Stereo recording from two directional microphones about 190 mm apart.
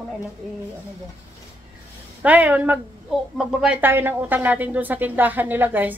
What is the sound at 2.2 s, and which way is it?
A woman's voice, 10° right (ahead or behind).